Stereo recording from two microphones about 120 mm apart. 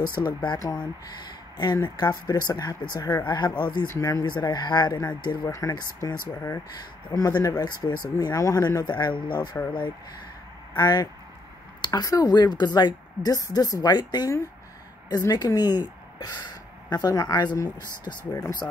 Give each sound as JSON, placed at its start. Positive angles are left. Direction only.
{"t": 0.2, "sound": "speech", "side_deg": 40}
{"t": 1.6, "sound": "speech", "side_deg": 40}
{"t": 3.8, "sound": "speech", "side_deg": 25}